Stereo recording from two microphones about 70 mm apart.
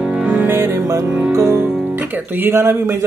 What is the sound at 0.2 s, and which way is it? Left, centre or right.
Music, right.